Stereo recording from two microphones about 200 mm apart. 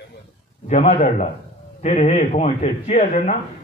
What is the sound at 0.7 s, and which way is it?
Speech, 35° left (ahead or behind).